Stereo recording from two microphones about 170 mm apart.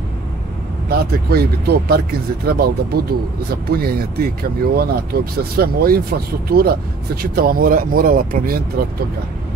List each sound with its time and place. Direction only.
0.8 s speech: 65° right (ahead or behind)